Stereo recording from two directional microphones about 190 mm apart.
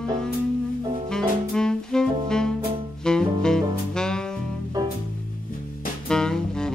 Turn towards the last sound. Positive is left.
turn(degrees=5)  # may be behind; listen again after turning